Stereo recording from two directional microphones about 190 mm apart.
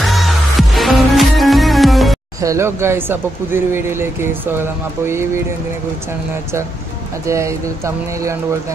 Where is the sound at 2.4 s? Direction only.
15° right (ahead or behind).